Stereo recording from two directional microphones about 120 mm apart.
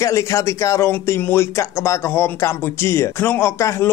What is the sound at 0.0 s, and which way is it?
Speech, 25° left (ahead or behind).